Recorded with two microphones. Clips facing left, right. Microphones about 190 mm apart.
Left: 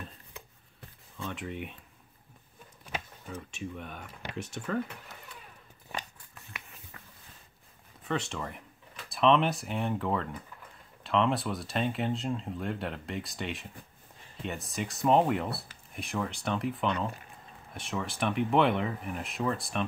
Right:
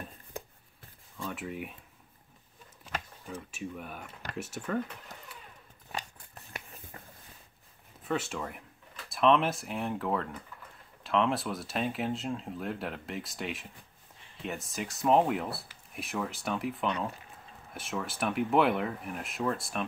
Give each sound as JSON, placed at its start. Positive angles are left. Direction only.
{"t": 1.2, "sound": "speech", "side_deg": -5}
{"t": 3.3, "sound": "speech", "side_deg": -10}
{"t": 6.3, "sound": "a sound", "side_deg": -35}
{"t": 8.0, "sound": "speech", "side_deg": -5}